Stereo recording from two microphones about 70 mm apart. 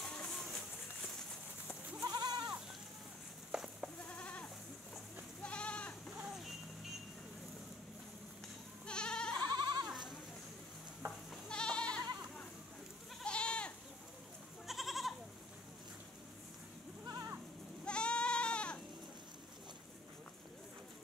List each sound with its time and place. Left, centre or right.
0.0 s music: centre
2.0 s goat: right
3.5 s goat: centre
4.1 s goat: left
6.1 s vehicle: centre
8.8 s goat: centre
9.5 s goat: right
11.4 s goat: centre
13.2 s goat: centre
14.7 s goat: centre
17.0 s goat: right
17.8 s goat: centre